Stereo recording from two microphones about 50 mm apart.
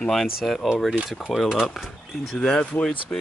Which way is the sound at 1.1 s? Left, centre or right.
Centre.